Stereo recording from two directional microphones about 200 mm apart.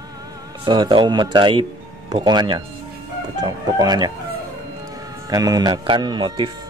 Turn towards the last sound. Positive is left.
turn(degrees=-20)  # may be behind; listen again after turning